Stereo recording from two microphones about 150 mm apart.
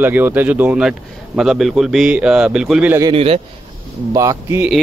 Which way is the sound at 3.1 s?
40° right (ahead or behind).